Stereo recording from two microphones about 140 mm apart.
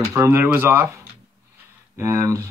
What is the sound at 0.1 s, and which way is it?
Speech, 20° right (ahead or behind).